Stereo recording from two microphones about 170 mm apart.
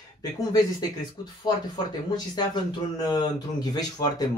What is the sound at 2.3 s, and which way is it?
Speech, 25° left (ahead or behind).